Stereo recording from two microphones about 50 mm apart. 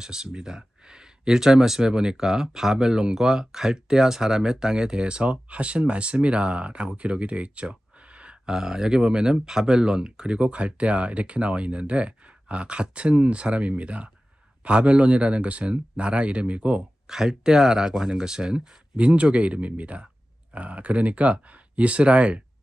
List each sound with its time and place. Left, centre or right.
0.0 s speech: centre
17.1 s speech: centre